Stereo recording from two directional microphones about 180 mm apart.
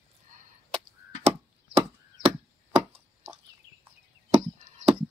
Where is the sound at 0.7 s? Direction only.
30° right (ahead or behind).